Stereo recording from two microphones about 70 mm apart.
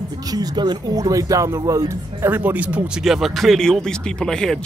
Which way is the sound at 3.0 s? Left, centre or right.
Centre.